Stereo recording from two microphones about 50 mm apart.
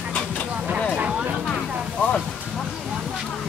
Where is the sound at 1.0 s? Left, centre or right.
Centre.